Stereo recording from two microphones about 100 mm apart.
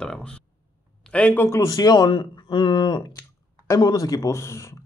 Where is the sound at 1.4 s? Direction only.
35° left (ahead or behind).